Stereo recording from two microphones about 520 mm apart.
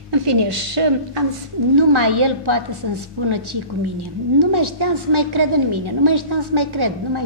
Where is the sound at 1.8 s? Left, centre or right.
Right.